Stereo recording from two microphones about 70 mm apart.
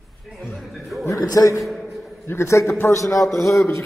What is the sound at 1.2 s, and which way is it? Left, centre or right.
Speech, left.